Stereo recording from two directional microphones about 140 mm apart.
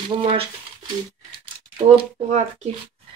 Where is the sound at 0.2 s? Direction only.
40° right (ahead or behind).